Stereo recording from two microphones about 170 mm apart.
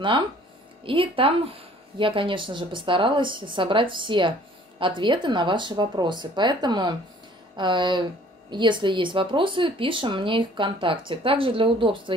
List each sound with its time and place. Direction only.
0.8 s speech: 30° right (ahead or behind)